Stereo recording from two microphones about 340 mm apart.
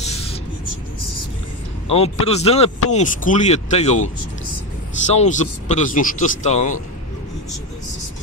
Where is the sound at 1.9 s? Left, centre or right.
Centre.